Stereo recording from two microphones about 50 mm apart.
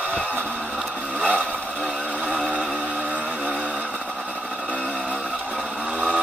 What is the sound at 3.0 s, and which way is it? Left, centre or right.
Music, right.